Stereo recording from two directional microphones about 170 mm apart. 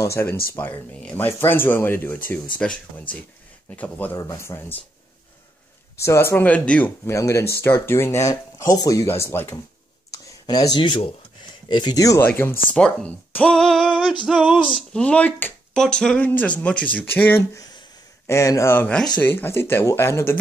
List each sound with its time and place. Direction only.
0.0 s speech: 15° left (ahead or behind)
5.9 s speech: 15° left (ahead or behind)
10.1 s a sound: 20° left (ahead or behind)
11.7 s speech: 25° left (ahead or behind)